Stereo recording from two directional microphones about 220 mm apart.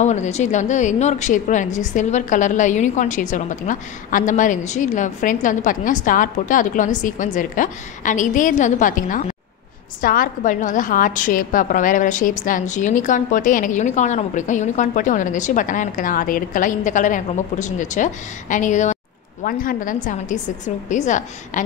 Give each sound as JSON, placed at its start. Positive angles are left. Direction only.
{"t": 0.0, "sound": "a woman's voice", "side_deg": 30}